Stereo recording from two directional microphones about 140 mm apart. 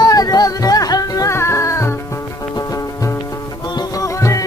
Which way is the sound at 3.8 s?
25° left (ahead or behind).